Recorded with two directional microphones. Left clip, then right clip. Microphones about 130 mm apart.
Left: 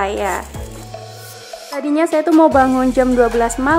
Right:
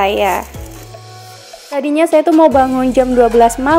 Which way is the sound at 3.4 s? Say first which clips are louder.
Right 8 dB; 25° right (ahead or behind).